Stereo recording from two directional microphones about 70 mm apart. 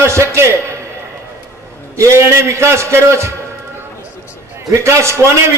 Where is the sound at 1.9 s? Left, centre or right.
Right.